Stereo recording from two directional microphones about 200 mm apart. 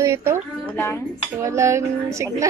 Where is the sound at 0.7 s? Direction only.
10° left (ahead or behind).